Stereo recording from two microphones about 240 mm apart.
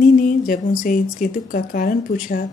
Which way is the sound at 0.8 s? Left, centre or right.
Left.